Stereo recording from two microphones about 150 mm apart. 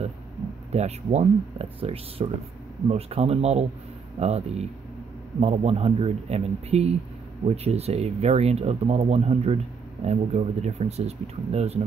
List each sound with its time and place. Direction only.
0.7 s speech: 45° right (ahead or behind)